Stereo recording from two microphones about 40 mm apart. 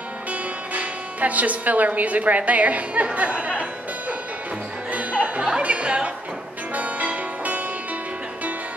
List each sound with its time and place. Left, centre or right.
0.3 s speech: right
4.9 s music: right
5.6 s speech: right
6.7 s music: right